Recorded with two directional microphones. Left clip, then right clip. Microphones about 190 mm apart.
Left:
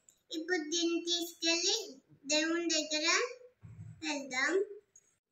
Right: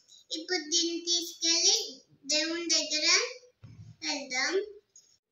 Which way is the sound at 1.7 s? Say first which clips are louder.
Right 6 dB; centre (ahead or behind).